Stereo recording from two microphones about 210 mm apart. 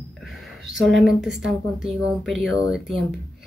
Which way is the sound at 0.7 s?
Centre (ahead or behind).